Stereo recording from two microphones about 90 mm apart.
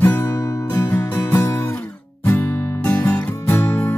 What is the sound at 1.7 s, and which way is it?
Music, 15° left (ahead or behind).